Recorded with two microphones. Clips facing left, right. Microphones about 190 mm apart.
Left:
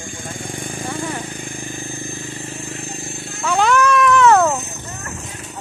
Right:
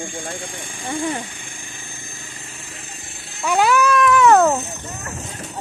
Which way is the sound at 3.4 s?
10° right (ahead or behind).